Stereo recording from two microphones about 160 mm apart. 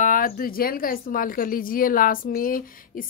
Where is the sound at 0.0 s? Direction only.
60° left (ahead or behind).